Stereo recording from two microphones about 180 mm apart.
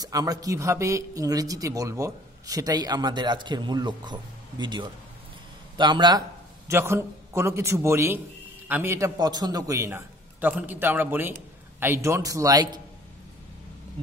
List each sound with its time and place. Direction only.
0.0 s speech: 20° right (ahead or behind)
6.7 s a man's voice: 15° right (ahead or behind)